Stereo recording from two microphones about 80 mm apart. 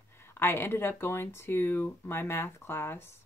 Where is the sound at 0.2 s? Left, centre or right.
Left.